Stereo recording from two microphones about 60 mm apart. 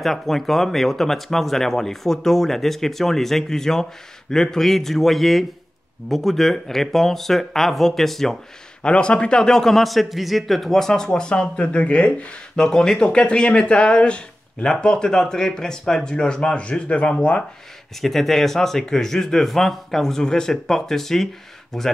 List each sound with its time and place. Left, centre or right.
0.0 s speech: centre
8.8 s a man's voice: centre
18.0 s a man's voice: centre